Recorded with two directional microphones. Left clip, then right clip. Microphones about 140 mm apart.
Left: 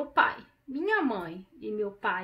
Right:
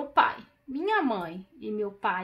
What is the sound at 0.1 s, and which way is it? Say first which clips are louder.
A woman's voice: right 2 dB; 25° right (ahead or behind).